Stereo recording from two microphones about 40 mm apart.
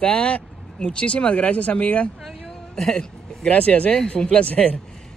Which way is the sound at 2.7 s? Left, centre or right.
Centre.